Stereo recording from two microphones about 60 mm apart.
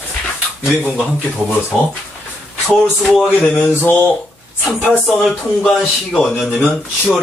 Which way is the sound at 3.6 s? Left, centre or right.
Left.